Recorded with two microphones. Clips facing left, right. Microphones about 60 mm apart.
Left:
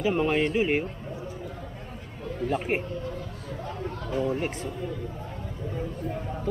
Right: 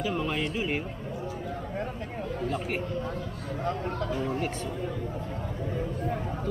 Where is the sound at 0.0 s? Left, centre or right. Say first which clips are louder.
Left 5 dB; left.